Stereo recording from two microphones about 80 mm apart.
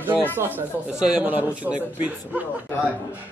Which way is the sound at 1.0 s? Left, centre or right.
Centre.